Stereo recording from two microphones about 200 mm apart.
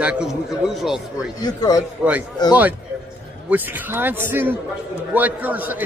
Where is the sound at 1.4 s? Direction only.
20° left (ahead or behind).